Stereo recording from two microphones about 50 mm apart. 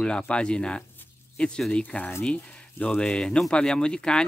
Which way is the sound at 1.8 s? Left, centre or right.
Left.